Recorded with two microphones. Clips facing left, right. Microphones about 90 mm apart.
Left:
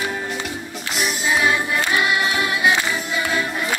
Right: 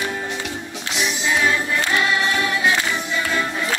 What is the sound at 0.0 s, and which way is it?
Music, 5° left (ahead or behind).